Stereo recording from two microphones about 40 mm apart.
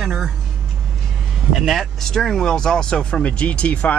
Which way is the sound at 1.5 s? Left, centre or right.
Centre.